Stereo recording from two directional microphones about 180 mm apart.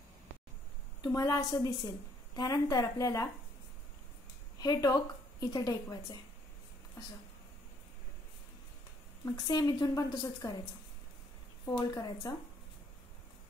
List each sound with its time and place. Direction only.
1.0 s a woman's voice: 20° left (ahead or behind)
4.6 s speech: 20° left (ahead or behind)
9.2 s a woman's voice: 20° left (ahead or behind)
11.7 s a woman's voice: 25° left (ahead or behind)